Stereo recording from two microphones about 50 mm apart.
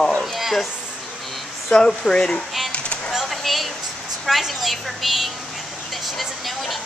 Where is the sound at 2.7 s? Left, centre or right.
Left.